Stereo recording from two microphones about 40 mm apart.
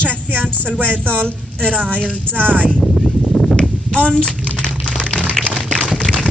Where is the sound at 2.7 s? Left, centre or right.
Left.